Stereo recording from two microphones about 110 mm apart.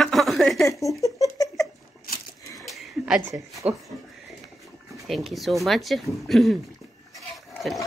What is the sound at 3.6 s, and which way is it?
Speech, 15° right (ahead or behind).